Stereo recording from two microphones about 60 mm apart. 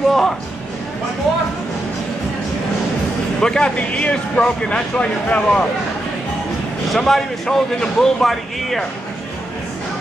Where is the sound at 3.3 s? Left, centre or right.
Centre.